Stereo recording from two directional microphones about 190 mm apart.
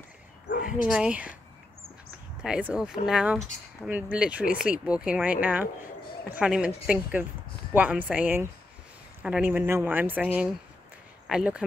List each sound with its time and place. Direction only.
0.8 s a woman's voice: 5° right (ahead or behind)
2.4 s a woman's voice: 5° right (ahead or behind)